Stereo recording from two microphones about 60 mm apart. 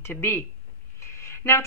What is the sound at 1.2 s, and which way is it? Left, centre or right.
Music, left.